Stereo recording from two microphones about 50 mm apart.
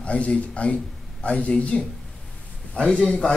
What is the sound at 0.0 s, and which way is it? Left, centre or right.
A man's voice, left.